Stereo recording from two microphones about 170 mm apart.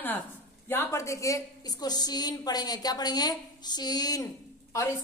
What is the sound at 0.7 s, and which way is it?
A woman's voice, 15° left (ahead or behind).